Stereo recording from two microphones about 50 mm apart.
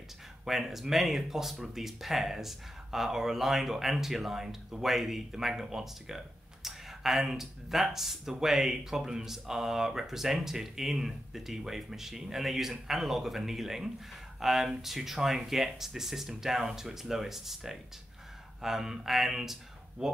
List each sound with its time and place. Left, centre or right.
0.5 s speech: centre